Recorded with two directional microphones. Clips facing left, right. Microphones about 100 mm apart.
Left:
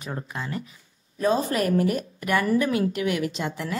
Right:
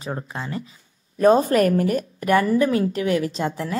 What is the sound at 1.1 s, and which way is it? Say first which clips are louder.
A woman's voice: right 7 dB; 55° right (ahead or behind).